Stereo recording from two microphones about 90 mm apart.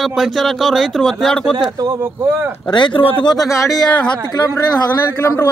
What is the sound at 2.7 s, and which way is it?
Speech, 65° left (ahead or behind).